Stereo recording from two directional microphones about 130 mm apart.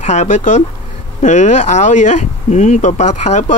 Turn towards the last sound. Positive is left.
turn(degrees=65)  # may be behind; listen again after turning